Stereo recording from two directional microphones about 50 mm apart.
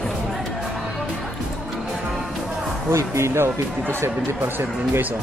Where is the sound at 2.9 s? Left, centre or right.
Right.